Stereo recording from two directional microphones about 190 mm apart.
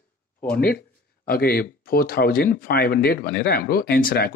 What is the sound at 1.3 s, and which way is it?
Speech, 50° left (ahead or behind).